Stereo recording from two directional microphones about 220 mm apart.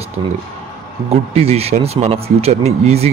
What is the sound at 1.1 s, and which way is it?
A man's voice, 25° right (ahead or behind).